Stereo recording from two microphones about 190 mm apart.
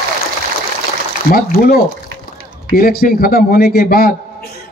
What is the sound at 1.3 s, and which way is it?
A man's voice, 50° left (ahead or behind).